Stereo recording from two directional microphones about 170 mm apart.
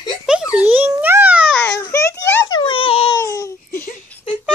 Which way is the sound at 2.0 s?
90° left.